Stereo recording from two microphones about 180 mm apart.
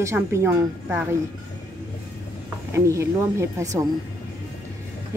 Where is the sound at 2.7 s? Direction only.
15° right (ahead or behind).